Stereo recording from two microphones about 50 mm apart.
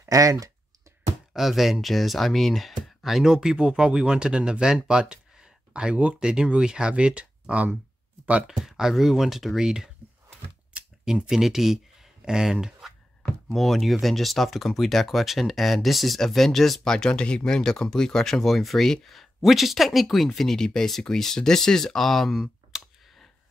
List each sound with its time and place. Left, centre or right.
1.3 s speech: centre
4.8 s a sound: centre
6.1 s speech: centre
8.5 s speech: centre
11.1 s speech: centre
13.2 s speech: centre